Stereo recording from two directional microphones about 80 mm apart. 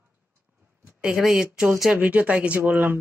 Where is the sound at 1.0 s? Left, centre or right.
Centre.